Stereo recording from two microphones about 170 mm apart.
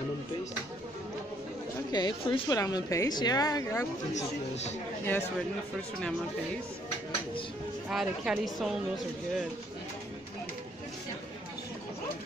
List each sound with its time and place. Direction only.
1.9 s a woman's voice: 25° left (ahead or behind)
4.1 s speech: 40° left (ahead or behind)
7.9 s speech: centre (ahead or behind)